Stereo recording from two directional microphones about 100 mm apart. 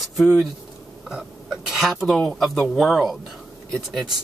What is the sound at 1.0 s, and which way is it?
Speech, 5° right (ahead or behind).